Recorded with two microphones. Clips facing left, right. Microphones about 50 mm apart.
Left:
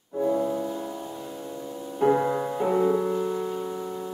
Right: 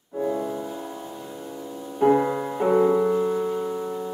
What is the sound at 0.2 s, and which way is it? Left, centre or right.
Music, centre.